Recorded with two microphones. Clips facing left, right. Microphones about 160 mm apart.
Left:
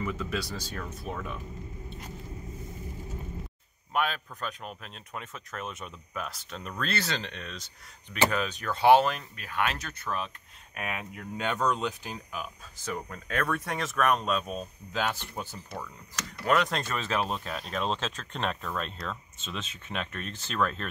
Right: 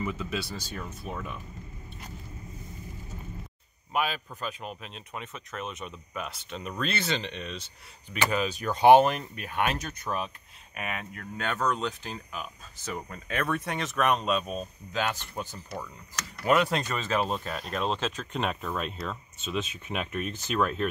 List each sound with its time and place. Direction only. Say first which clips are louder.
0.0 s speech: even; 20° right (ahead or behind)
0.4 s speech: even; centre (ahead or behind)
3.9 s speech: even; 5° right (ahead or behind)
10.7 s speech: even; centre (ahead or behind)
16.4 s speech: right 2 dB; 10° right (ahead or behind)